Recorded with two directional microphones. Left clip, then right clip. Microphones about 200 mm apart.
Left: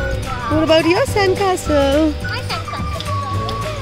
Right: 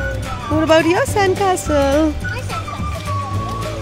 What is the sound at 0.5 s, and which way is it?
Speech, centre (ahead or behind).